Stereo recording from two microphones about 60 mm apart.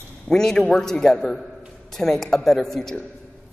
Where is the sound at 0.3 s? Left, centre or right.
Centre.